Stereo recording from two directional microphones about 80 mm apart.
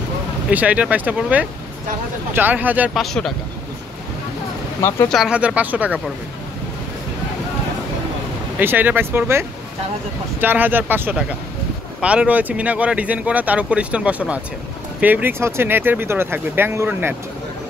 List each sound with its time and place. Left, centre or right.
0.5 s speech: centre
2.9 s speech: centre
4.8 s speech: left
5.3 s speech: centre
8.5 s speech: right